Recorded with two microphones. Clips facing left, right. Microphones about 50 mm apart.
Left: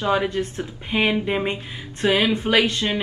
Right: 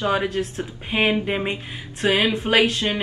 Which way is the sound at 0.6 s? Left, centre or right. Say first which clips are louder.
Even; right.